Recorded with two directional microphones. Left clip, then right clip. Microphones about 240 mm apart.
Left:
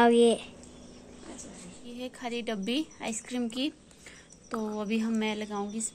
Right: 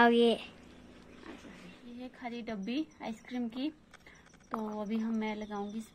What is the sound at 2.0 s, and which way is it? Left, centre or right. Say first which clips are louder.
A woman's voice: left 7 dB; left.